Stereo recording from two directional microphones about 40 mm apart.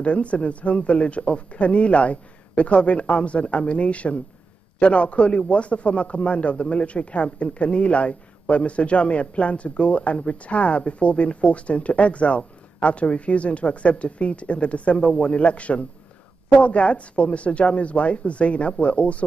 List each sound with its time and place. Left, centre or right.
0.0 s a man's voice: left